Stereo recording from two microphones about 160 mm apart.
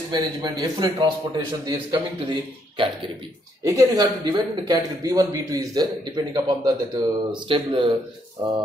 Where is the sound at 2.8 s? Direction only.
30° right (ahead or behind).